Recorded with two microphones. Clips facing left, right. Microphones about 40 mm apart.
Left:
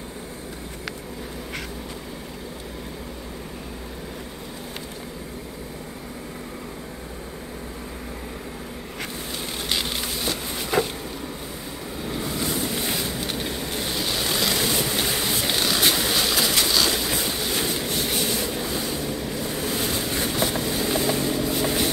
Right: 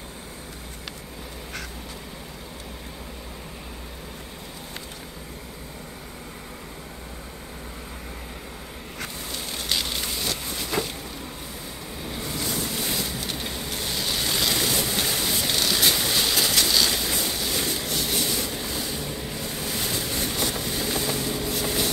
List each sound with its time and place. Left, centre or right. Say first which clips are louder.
9.7 s a sound: left 1 dB; centre
12.4 s boat: left 2 dB; centre
13.4 s vehicle: left 3 dB; centre
14.0 s a sound: left 1 dB; centre
17.6 s train: left 2 dB; left
18.5 s vehicle: left 3 dB; centre
18.9 s boat: left 4 dB; centre
19.7 s vehicle: left 1 dB; centre